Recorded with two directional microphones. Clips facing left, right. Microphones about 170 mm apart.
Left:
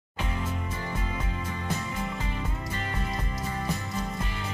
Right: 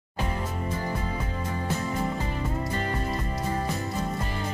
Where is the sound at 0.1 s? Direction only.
40° right (ahead or behind).